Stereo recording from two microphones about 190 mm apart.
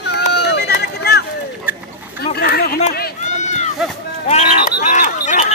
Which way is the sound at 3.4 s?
40° left (ahead or behind).